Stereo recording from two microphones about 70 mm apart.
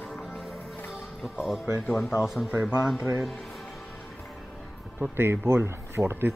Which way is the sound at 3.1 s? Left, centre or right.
Centre.